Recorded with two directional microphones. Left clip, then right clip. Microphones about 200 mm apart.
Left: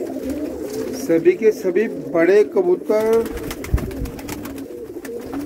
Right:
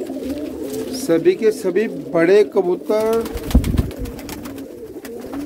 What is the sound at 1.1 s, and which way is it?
Speech, 20° right (ahead or behind).